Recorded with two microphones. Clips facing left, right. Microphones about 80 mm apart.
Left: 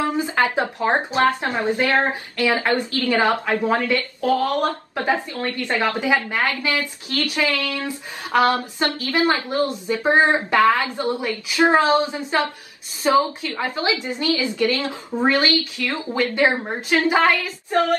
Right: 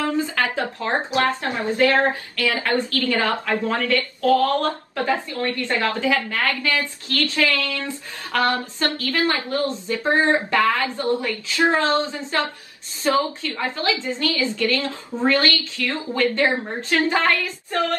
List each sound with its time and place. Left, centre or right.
0.0 s speech: centre
13.0 s female singing: centre
14.0 s speech: centre
17.1 s female singing: centre